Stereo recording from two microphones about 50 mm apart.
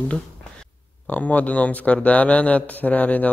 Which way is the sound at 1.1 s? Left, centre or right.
Left.